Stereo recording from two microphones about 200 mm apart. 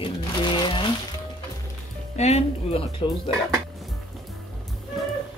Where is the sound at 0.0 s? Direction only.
25° left (ahead or behind).